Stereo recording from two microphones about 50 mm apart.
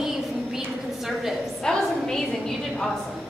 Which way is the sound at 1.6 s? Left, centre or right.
Centre.